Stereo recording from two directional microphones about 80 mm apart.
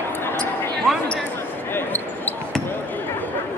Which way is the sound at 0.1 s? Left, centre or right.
Left.